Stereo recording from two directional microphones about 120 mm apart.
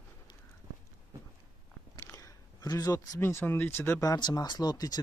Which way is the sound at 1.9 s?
25° left (ahead or behind).